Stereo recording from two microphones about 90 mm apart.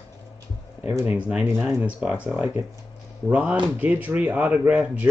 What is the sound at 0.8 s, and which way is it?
Speech, 35° right (ahead or behind).